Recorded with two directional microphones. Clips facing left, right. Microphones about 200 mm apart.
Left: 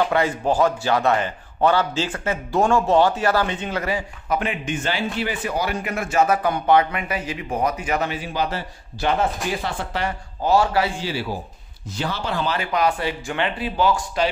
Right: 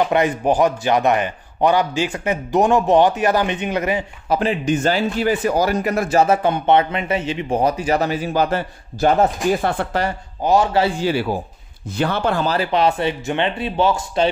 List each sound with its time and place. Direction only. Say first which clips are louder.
0.1 s a man's voice: right 3 dB; 20° right (ahead or behind)
4.3 s a man's voice: right 6 dB; 35° right (ahead or behind); by 10.0 s 55° right (ahead or behind)
10.4 s speech: right 3 dB; 20° right (ahead or behind)
11.0 s a man's voice: right 7 dB; 55° right (ahead or behind)
12.7 s speech: right 2 dB; 25° right (ahead or behind)